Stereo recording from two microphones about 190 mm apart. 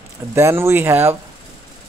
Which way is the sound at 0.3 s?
15° right (ahead or behind).